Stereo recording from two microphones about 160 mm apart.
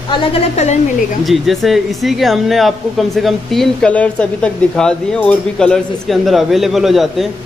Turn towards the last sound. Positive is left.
turn(degrees=0)  # may be behind; listen again after turning